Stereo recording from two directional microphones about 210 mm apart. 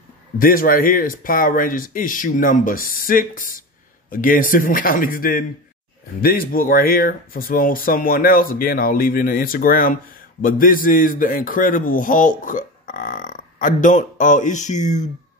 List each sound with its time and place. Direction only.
0.4 s a man's voice: 40° left (ahead or behind)